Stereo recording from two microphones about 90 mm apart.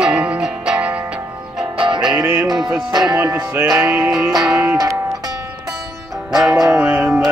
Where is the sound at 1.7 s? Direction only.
65° right (ahead or behind).